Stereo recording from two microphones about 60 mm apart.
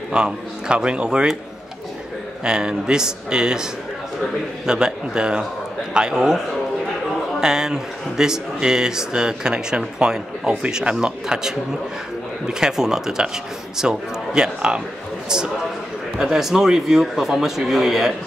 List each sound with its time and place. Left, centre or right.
0.1 s a man's voice: centre
2.4 s a man's voice: centre
4.6 s a man's voice: centre